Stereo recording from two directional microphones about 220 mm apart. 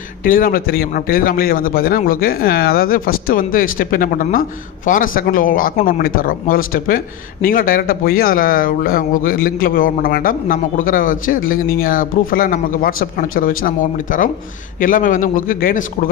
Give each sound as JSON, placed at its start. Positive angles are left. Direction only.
{"t": 0.2, "sound": "a man's voice", "side_deg": 40}